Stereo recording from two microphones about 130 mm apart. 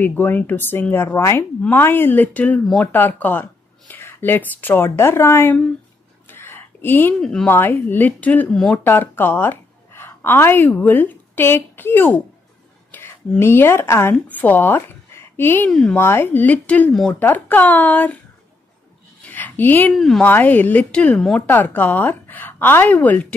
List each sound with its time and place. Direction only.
0.0 s a woman's voice: 15° left (ahead or behind)
6.3 s a sound: 15° left (ahead or behind)
7.2 s speech: 5° left (ahead or behind)
7.4 s a woman's voice: 15° left (ahead or behind)
15.7 s speech: 5° left (ahead or behind)
16.0 s speech: 15° left (ahead or behind)
19.2 s a sound: 15° left (ahead or behind)
20.0 s speech: centre (ahead or behind)
20.2 s speech: 15° left (ahead or behind)